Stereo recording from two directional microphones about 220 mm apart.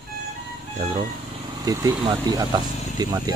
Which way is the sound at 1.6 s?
15° right (ahead or behind).